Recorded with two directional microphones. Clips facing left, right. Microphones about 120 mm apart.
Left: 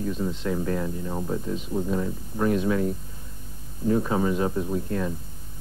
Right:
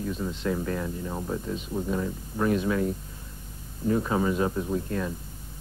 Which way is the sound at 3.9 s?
15° left (ahead or behind).